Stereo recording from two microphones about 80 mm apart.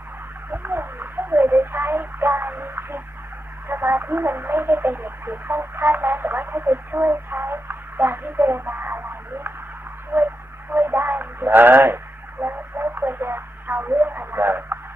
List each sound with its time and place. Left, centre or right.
0.5 s a sound: right
3.6 s speech: right
10.7 s speech: right